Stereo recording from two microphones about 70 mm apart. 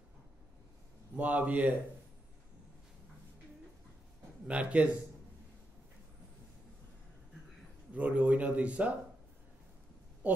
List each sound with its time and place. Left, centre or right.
1.1 s speech: right
4.5 s a man's voice: centre
7.9 s speech: centre
10.2 s a woman's voice: right